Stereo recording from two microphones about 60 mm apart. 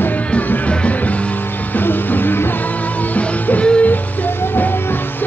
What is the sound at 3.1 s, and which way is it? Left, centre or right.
Music, left.